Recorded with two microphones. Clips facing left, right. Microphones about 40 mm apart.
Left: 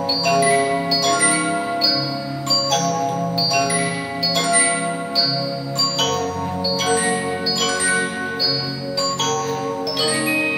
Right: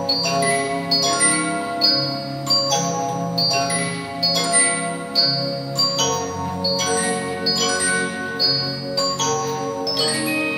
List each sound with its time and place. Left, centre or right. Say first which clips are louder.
0.2 s music: left 5 dB; centre
2.8 s music: left 2 dB; centre
4.4 s music: left 3 dB; left
6.8 s music: left 4 dB; centre